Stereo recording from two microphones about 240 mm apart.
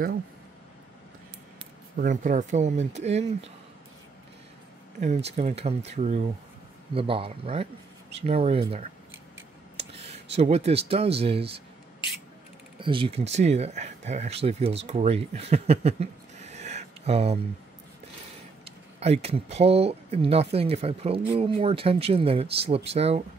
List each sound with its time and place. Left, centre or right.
2.0 s speech: right
5.0 s speech: right
9.8 s clicking: right
10.3 s speech: right
12.7 s speech: right
19.2 s speech: right